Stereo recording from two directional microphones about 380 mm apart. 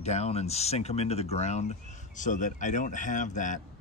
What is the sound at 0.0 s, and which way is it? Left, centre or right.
Speech, centre.